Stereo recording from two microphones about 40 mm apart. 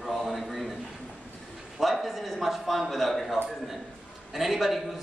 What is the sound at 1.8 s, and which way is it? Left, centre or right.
A man's voice, centre.